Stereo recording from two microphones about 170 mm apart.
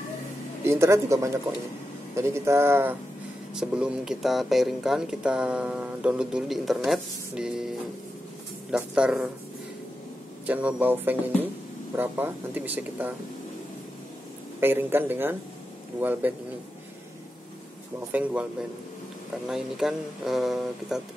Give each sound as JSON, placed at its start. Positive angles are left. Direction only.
{"t": 0.7, "sound": "speech", "side_deg": -15}
{"t": 8.7, "sound": "speech", "side_deg": -5}
{"t": 10.4, "sound": "speech", "side_deg": -10}
{"t": 14.6, "sound": "speech", "side_deg": -10}
{"t": 18.1, "sound": "speech", "side_deg": -5}